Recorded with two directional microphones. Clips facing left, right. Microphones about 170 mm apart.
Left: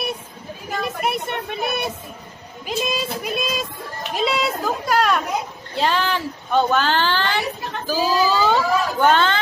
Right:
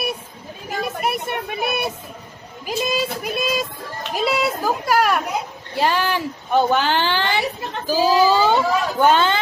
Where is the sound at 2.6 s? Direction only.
5° right (ahead or behind).